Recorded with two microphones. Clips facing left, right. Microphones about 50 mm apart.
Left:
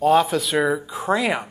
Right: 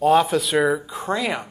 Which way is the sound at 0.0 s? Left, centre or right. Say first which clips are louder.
Even; centre.